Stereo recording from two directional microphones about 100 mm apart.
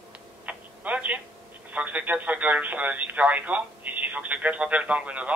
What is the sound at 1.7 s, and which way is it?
Speech, 15° right (ahead or behind).